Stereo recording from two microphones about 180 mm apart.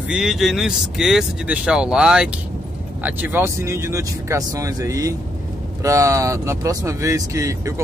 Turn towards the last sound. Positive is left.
turn(degrees=-15)  # may be behind; listen again after turning